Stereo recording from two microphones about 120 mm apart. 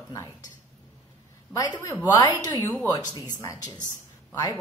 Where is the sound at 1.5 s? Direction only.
30° left (ahead or behind).